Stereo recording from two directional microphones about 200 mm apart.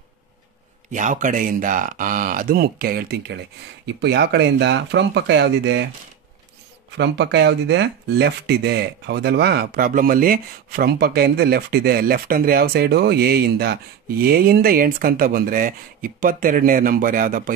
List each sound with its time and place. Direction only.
0.9 s speech: 40° right (ahead or behind); by 5.9 s 60° right (ahead or behind)
7.0 s speech: 60° right (ahead or behind); by 17.6 s 45° right (ahead or behind)